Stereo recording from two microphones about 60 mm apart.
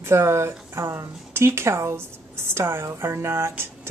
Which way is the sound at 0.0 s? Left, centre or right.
Right.